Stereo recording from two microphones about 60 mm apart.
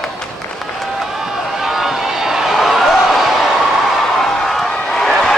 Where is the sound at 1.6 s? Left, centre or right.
Centre.